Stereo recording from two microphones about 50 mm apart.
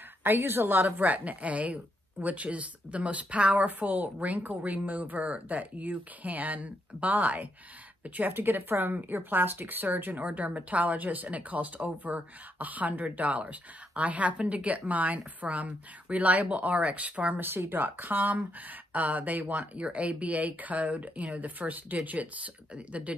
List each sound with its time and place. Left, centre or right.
0.2 s a woman's voice: right
10.2 s speech: right
17.4 s a woman's voice: right